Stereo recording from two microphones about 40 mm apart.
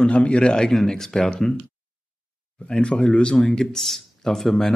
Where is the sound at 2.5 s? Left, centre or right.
Left.